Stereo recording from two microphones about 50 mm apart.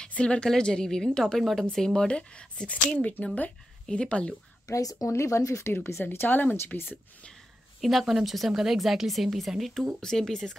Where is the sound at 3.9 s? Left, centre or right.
Left.